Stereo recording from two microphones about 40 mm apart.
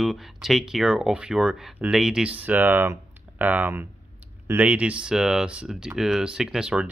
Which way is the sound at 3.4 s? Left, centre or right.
Right.